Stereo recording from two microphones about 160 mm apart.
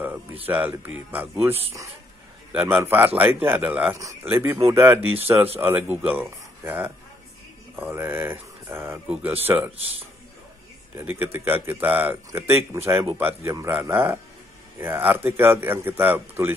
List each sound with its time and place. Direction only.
0.5 s speech: 10° right (ahead or behind)
2.5 s speech: 10° right (ahead or behind)
11.0 s speech: 15° right (ahead or behind)